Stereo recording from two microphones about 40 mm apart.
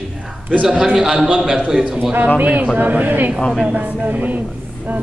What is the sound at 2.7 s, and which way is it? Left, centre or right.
Speech, right.